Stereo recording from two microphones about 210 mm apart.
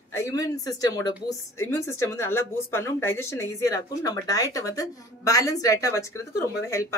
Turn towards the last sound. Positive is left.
turn(degrees=15)  # may be behind; listen again after turning